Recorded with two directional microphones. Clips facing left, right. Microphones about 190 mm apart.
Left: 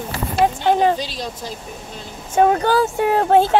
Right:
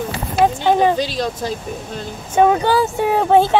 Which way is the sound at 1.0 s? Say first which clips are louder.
Right 7 dB; 85° right.